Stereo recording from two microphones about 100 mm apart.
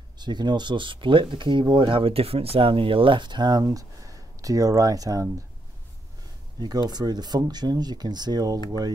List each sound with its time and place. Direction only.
0.2 s speech: 45° right (ahead or behind)
6.6 s speech: 45° right (ahead or behind)